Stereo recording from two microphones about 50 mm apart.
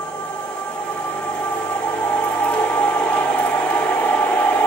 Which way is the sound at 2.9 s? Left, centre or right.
Left.